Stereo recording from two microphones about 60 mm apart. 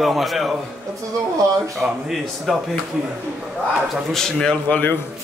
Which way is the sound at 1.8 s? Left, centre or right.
Centre.